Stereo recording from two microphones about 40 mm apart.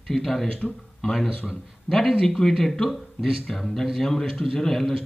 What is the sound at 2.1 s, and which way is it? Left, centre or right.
Speech, centre.